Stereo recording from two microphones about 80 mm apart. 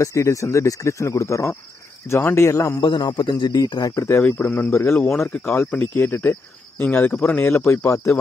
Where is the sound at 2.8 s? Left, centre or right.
Left.